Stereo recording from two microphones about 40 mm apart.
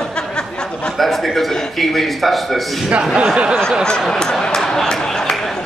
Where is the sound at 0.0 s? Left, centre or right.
Left.